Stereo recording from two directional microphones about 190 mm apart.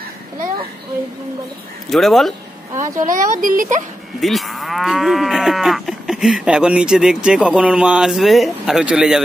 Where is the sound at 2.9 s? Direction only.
45° right (ahead or behind).